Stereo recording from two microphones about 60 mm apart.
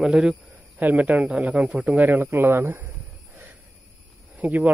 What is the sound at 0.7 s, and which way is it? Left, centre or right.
Speech, right.